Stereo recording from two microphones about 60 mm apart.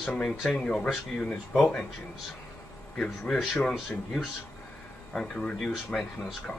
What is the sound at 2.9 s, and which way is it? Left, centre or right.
Speech, centre.